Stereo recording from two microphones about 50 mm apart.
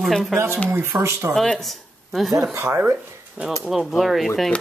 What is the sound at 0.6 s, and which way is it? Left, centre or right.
Speech, right.